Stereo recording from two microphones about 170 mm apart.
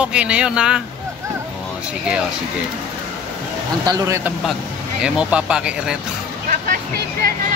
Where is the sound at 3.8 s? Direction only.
15° right (ahead or behind).